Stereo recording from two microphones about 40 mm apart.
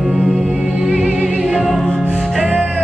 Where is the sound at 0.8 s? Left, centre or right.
Centre.